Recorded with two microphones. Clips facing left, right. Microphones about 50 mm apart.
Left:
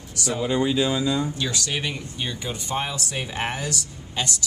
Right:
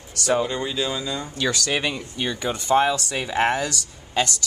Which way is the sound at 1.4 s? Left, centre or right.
Right.